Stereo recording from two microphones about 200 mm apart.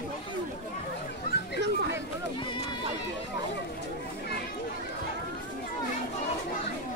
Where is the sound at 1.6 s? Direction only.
60° right (ahead or behind).